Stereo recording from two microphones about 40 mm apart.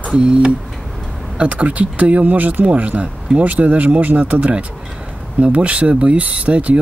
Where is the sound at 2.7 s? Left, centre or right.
Right.